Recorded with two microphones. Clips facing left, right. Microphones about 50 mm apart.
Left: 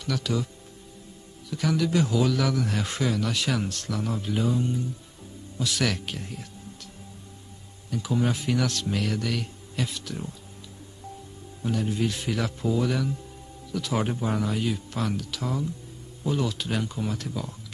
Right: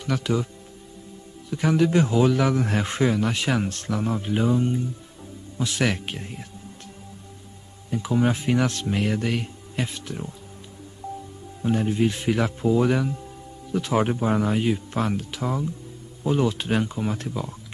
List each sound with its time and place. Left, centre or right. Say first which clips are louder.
0.0 s speech: right 3 dB; right
1.5 s a man's voice: right 4 dB; right
7.9 s a man's voice: right 4 dB; right
11.6 s a man's voice: right 5 dB; right